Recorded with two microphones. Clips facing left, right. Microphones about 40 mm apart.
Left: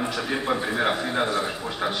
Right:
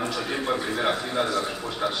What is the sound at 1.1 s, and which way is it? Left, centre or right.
Speech, left.